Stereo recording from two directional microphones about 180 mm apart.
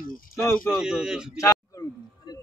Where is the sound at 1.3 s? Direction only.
15° left (ahead or behind).